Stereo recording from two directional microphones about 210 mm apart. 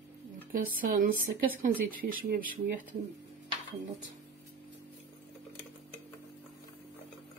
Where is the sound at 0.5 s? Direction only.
40° right (ahead or behind).